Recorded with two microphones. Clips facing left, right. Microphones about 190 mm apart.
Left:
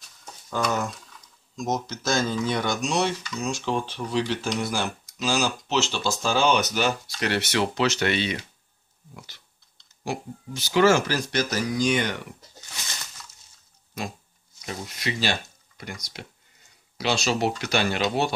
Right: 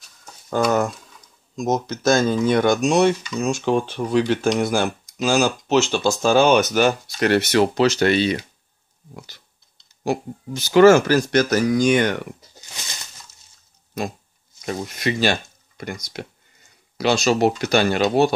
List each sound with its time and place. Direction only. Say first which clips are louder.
0.5 s speech: right 7 dB; 50° right (ahead or behind)
14.6 s speech: right 8 dB; 50° right (ahead or behind)